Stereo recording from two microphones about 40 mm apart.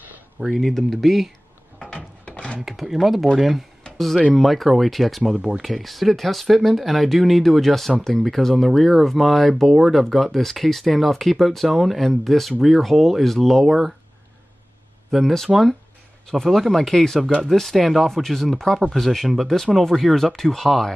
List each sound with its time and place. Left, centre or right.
0.6 s speech: centre
1.8 s wood: left
2.6 s speech: centre
5.3 s speech: right
5.6 s speech: centre
15.0 s speech: centre
15.3 s speech: centre
19.4 s speech: centre